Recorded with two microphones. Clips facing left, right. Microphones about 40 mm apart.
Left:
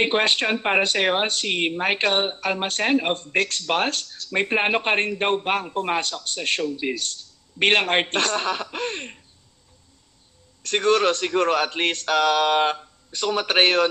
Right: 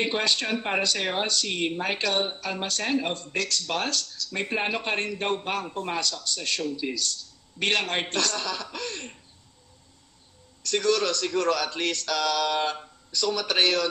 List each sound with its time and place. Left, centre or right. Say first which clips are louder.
0.0 s speech: left 5 dB; left
10.6 s speech: left 5 dB; left